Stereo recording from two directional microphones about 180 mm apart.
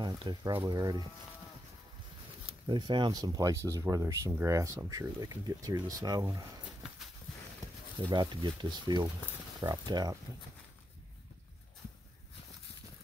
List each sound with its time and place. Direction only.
0.0 s speech: 25° right (ahead or behind)
2.6 s speech: 25° right (ahead or behind)
8.1 s speech: 25° right (ahead or behind)